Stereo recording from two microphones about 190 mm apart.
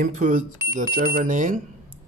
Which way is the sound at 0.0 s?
45° right (ahead or behind).